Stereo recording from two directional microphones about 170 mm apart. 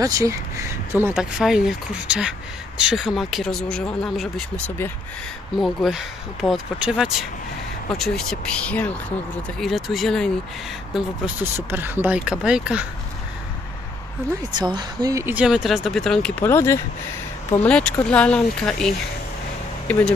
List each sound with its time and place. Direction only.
0.0 s speech: 20° right (ahead or behind); by 4.9 s 10° left (ahead or behind)
5.6 s speech: centre (ahead or behind)
11.7 s speech: 10° right (ahead or behind)
14.6 s speech: 25° right (ahead or behind)
15.3 s speech: 5° right (ahead or behind)